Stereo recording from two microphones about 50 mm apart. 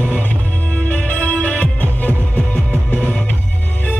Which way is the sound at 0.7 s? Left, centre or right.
Left.